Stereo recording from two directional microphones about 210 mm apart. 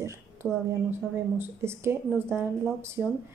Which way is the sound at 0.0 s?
15° right (ahead or behind).